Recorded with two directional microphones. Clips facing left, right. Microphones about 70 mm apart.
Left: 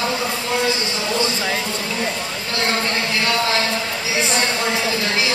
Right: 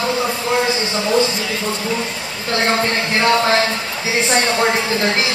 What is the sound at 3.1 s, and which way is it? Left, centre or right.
Speech, right.